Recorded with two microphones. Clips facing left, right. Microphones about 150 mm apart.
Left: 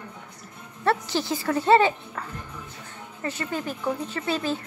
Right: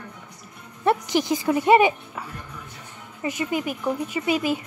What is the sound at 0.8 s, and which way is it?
Speech, 15° right (ahead or behind).